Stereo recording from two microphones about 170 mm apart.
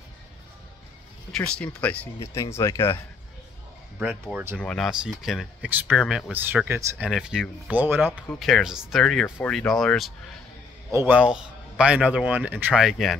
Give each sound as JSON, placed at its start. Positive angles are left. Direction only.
{"t": 1.3, "sound": "speech", "side_deg": 5}
{"t": 4.0, "sound": "speech", "side_deg": -10}
{"t": 4.6, "sound": "speech", "side_deg": 5}
{"t": 8.4, "sound": "speech", "side_deg": 0}
{"t": 10.9, "sound": "a man's voice", "side_deg": -15}
{"t": 11.1, "sound": "speech", "side_deg": -5}